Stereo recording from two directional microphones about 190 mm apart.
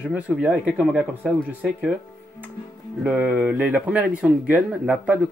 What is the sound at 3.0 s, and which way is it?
Speech, 5° right (ahead or behind).